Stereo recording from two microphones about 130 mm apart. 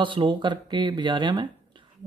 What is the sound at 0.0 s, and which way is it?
Mantra, 40° right (ahead or behind).